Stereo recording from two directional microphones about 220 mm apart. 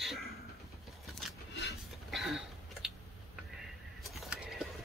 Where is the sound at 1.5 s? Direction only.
50° left (ahead or behind).